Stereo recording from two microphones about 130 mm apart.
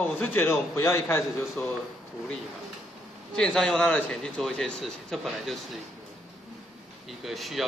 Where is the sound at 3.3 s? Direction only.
5° left (ahead or behind).